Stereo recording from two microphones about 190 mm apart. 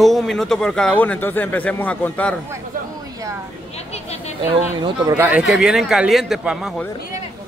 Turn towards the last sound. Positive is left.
turn(degrees=-5)  # may be behind; listen again after turning